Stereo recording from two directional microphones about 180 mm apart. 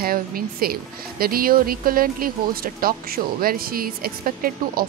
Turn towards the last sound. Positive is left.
turn(degrees=-55)  # may be behind; listen again after turning